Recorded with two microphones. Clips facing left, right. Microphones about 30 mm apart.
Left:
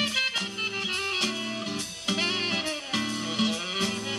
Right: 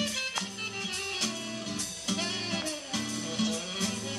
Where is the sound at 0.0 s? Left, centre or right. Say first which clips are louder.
Left 6 dB; left.